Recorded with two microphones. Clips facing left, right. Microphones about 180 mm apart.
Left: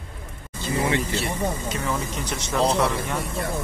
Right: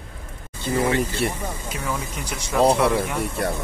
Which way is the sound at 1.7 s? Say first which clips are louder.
Left 1 dB; 10° right (ahead or behind).